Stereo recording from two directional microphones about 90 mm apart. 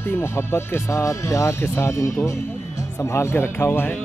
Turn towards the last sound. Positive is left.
turn(degrees=25)  # may be behind; listen again after turning